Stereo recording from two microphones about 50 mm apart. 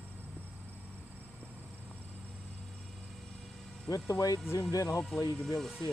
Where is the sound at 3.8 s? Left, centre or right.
Left.